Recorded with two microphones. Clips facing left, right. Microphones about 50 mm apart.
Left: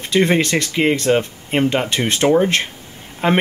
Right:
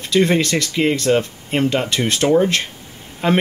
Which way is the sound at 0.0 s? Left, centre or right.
Left.